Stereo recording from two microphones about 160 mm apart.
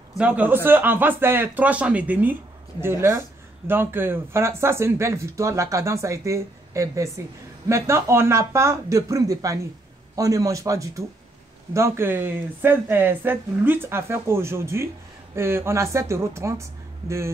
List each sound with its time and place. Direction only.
0.1 s speech: 10° right (ahead or behind)